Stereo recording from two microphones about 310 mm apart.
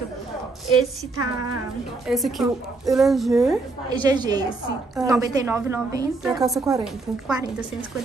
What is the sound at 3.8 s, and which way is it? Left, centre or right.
A woman's voice, centre.